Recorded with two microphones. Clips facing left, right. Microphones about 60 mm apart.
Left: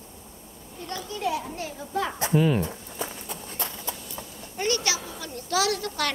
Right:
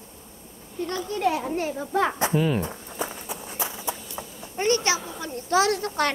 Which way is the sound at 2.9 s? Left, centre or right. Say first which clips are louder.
Right 3 dB; centre.